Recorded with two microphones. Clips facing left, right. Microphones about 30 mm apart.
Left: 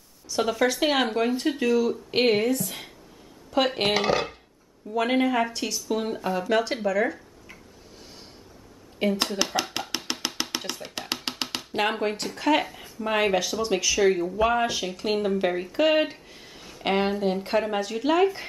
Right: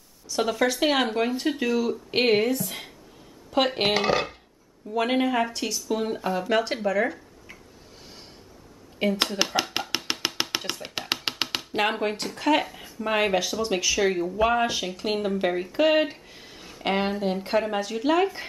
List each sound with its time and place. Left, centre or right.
0.3 s speech: centre
8.0 s a sound: centre
9.0 s speech: centre
9.8 s chopping: centre
10.4 s music: centre
11.0 s music: centre
11.5 s speech: centre